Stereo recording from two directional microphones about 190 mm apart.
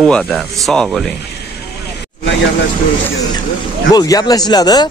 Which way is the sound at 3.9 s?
20° left (ahead or behind).